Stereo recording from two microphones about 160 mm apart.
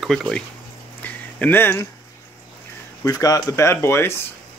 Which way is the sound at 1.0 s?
10° left (ahead or behind).